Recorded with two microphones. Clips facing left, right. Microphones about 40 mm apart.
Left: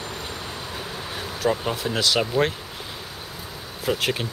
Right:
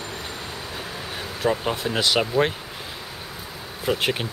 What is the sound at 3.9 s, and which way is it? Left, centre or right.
Speech, centre.